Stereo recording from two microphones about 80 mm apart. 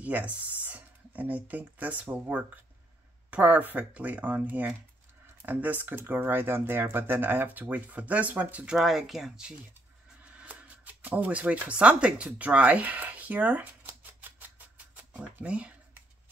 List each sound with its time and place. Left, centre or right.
0.0 s speech: centre
8.6 s speech: centre
10.2 s a sound: centre
15.0 s speech: centre